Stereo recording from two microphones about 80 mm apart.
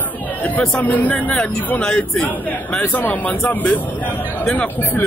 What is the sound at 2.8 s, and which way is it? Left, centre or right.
A man's voice, left.